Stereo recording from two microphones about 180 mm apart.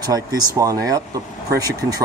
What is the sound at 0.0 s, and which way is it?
Speech, 20° right (ahead or behind).